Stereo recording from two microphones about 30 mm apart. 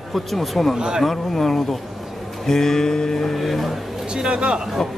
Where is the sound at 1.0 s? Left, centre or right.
Centre.